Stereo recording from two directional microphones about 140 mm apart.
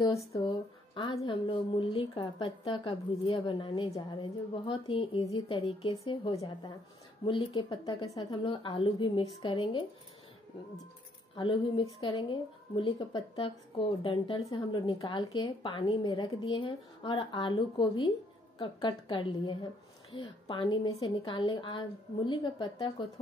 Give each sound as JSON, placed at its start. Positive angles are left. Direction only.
{"t": 0.1, "sound": "speech", "side_deg": 45}
{"t": 0.5, "sound": "speech", "side_deg": 35}
{"t": 11.3, "sound": "speech", "side_deg": 35}